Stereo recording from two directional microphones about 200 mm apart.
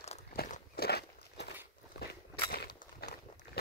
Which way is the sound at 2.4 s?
50° left (ahead or behind).